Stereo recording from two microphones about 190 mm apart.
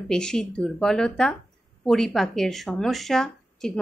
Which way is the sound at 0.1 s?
5° left (ahead or behind).